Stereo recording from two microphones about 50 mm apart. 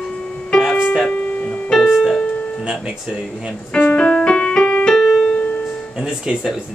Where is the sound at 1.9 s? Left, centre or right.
Centre.